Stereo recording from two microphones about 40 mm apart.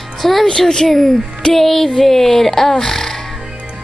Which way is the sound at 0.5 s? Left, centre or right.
Centre.